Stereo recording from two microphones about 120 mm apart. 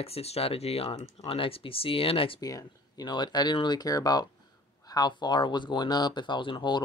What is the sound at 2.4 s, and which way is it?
Speech, 30° left (ahead or behind).